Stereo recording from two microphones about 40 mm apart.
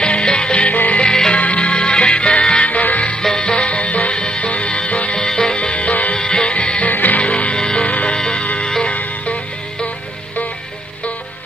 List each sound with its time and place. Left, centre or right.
0.0 s music: left
3.2 s music: centre; by 6.1 s left
6.1 s music: left
6.9 s music: left
7.2 s music: left
7.5 s music: centre
7.8 s music: left